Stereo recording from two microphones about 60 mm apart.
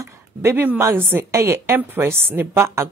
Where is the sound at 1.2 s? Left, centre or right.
Right.